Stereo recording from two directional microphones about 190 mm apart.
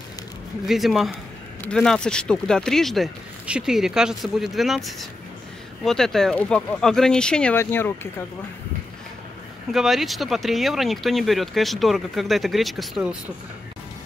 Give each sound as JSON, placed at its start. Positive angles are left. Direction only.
{"t": 0.7, "sound": "speech", "side_deg": 0}
{"t": 9.7, "sound": "speech", "side_deg": 0}